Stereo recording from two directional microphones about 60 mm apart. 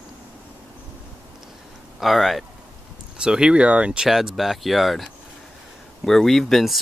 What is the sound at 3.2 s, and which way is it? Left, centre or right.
Speech, centre.